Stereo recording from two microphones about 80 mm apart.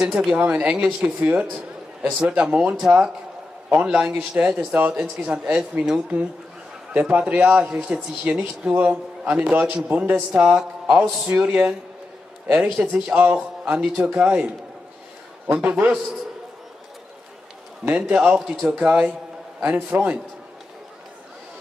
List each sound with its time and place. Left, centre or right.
0.4 s a man's voice: centre
10.6 s a man's voice: centre
12.9 s a man's voice: centre
15.5 s a man's voice: centre
17.8 s a man's voice: centre